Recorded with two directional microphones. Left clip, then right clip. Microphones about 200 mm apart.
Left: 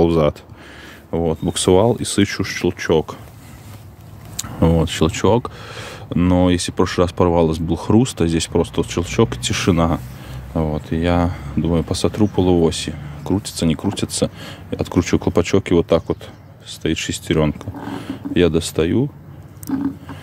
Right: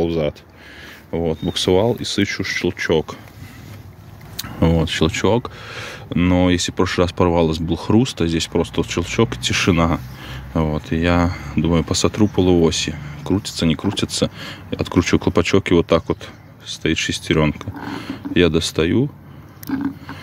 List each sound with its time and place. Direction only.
0.0 s speech: 20° left (ahead or behind)
1.1 s speech: 5° left (ahead or behind)
4.4 s speech: centre (ahead or behind)